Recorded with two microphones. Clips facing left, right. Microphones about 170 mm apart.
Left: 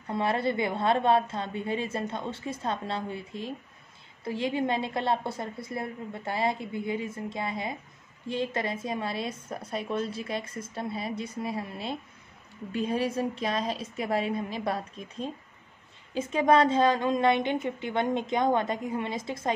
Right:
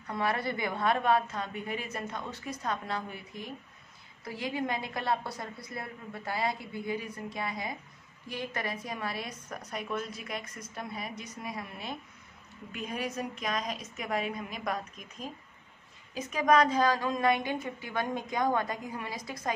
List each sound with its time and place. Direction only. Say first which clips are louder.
0.0 s a woman's voice: left 4 dB; 25° left (ahead or behind)